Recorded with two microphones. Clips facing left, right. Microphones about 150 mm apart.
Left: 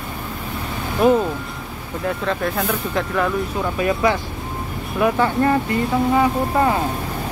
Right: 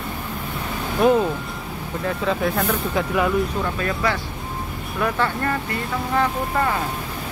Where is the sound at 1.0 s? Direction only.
5° left (ahead or behind).